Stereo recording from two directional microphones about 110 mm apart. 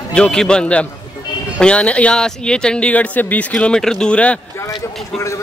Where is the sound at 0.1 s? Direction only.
5° left (ahead or behind).